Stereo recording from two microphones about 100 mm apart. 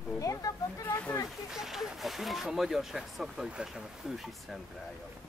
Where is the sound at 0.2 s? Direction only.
35° left (ahead or behind).